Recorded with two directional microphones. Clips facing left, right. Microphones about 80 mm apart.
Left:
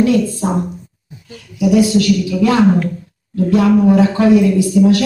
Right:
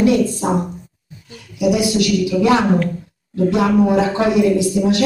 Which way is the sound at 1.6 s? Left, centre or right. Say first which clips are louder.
Left 4 dB; centre.